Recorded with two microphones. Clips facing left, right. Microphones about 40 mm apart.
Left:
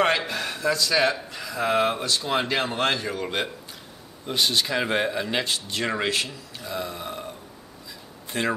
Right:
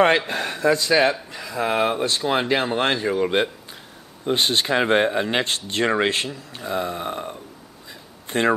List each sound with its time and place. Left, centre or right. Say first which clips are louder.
0.0 s speech: right 5 dB; right
4.3 s speech: right 4 dB; right
8.3 s speech: right 6 dB; right